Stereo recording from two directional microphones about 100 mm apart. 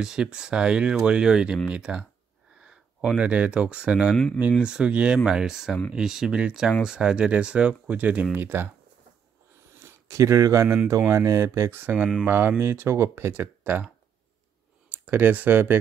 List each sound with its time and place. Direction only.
0.0 s speech: 10° right (ahead or behind)
9.8 s speech: 30° right (ahead or behind)
14.9 s speech: 15° right (ahead or behind)